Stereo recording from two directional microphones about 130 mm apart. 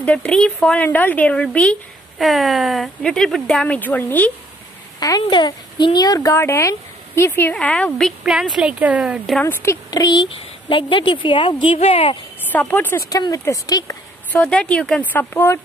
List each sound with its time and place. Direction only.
0.0 s speech: 10° left (ahead or behind)
5.0 s speech: 30° left (ahead or behind); by 8.1 s 10° left (ahead or behind)
8.2 s speech: 5° right (ahead or behind)
9.4 s a woman's voice: 20° left (ahead or behind); by 12.2 s 45° left (ahead or behind)
12.5 s speech: 15° left (ahead or behind)
13.1 s speech: 25° left (ahead or behind)
14.3 s speech: 10° left (ahead or behind)